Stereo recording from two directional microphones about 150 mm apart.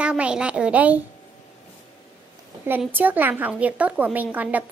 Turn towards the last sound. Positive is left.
turn(degrees=-10)  # may be behind; listen again after turning